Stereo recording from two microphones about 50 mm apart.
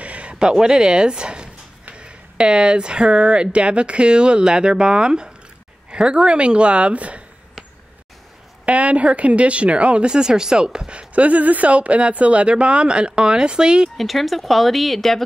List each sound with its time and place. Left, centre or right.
0.0 s speech: right
8.6 s speech: right
13.9 s speech: centre